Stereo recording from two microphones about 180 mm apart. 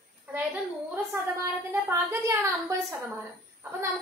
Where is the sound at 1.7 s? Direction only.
15° right (ahead or behind).